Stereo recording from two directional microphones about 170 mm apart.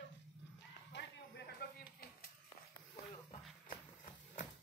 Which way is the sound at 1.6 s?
60° left (ahead or behind).